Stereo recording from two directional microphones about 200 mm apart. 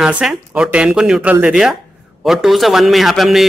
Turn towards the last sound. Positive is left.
turn(degrees=0)  # may be behind; listen again after turning